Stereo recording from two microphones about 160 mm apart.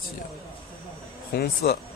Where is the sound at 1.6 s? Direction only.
90° left.